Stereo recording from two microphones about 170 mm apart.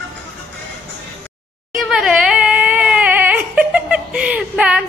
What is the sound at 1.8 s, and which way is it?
Crying, centre (ahead or behind).